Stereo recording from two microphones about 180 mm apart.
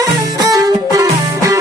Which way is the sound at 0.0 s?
20° right (ahead or behind).